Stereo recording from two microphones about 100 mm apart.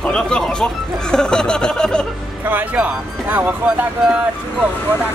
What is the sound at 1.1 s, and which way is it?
Snicker, 5° left (ahead or behind).